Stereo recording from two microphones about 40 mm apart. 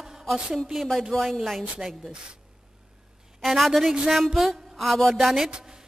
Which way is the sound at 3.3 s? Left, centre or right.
Centre.